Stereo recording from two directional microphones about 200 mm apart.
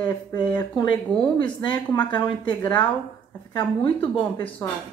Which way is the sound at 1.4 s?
20° left (ahead or behind).